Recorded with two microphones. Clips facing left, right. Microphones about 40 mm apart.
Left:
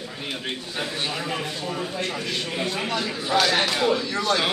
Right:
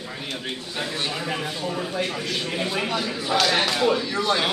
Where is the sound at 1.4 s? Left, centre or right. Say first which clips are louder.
Right 2 dB; centre.